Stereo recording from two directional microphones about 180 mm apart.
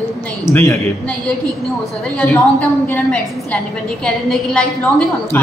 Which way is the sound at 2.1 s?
5° left (ahead or behind).